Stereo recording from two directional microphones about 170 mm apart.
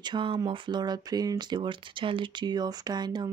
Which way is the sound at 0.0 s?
30° right (ahead or behind).